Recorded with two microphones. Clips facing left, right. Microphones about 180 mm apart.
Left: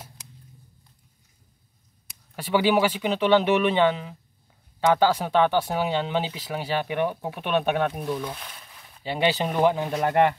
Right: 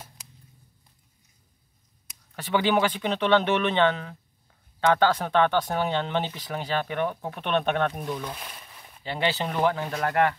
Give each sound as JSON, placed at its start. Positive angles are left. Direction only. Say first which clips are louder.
{"t": 2.3, "sound": "speech", "louder": "left 2 dB", "side_deg": 10}